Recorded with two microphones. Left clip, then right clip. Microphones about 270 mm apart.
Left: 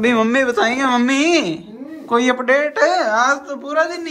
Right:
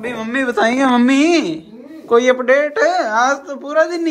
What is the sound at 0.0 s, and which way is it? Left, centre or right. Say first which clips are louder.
Speech: left 9 dB; left.